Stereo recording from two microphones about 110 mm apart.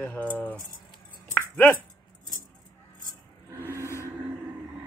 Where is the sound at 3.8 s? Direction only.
25° left (ahead or behind).